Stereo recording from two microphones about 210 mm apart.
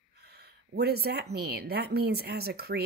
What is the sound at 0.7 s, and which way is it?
A woman's voice, 50° right (ahead or behind).